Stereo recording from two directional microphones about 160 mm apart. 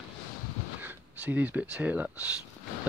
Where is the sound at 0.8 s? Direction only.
10° right (ahead or behind).